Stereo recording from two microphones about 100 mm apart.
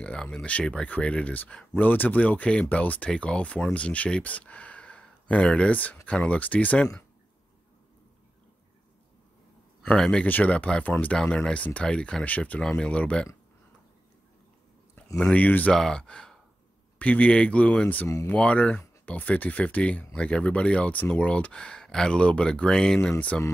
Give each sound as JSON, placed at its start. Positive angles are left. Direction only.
{"t": 0.0, "sound": "speech", "side_deg": 10}
{"t": 9.8, "sound": "speech", "side_deg": 5}
{"t": 15.1, "sound": "speech", "side_deg": 10}
{"t": 18.0, "sound": "speech", "side_deg": 25}
{"t": 18.3, "sound": "speech", "side_deg": 10}